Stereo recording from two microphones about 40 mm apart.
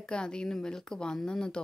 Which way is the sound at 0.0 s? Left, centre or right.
Left.